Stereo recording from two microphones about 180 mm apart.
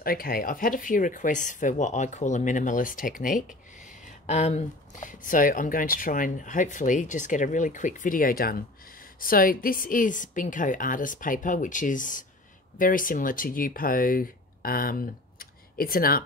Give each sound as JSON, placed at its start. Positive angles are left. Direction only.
{"t": 0.0, "sound": "speech", "side_deg": 55}